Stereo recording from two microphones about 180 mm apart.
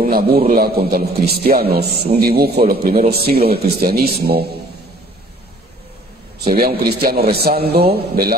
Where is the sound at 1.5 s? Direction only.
60° right (ahead or behind).